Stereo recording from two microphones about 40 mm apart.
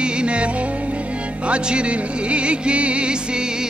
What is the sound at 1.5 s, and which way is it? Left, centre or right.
Music, right.